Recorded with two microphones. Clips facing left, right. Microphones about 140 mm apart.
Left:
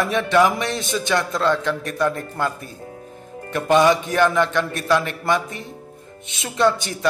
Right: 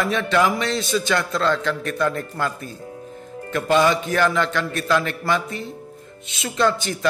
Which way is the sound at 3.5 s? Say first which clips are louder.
Left 2 dB; 20° left (ahead or behind).